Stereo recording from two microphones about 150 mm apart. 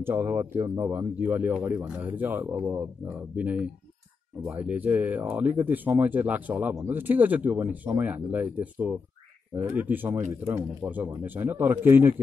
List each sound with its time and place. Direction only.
0.0 s speech: 15° right (ahead or behind)